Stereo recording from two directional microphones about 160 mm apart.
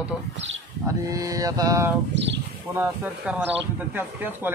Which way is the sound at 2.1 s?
90° right.